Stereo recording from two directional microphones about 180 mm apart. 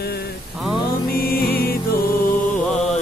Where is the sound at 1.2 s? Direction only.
55° left (ahead or behind).